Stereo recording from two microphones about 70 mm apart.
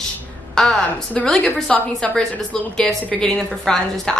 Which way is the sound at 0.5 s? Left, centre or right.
Centre.